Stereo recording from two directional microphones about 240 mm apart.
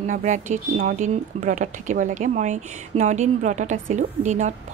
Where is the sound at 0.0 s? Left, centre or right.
Right.